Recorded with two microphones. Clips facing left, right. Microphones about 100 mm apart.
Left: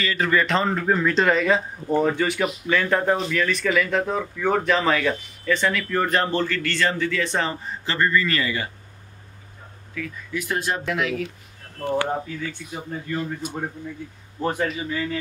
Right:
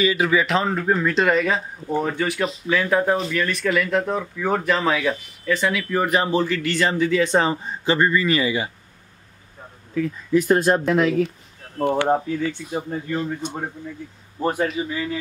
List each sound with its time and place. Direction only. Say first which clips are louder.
0.0 s speech: right 3 dB; 10° right (ahead or behind)
9.9 s speech: right 11 dB; 35° right (ahead or behind)
14.4 s speech: right 2 dB; 5° right (ahead or behind)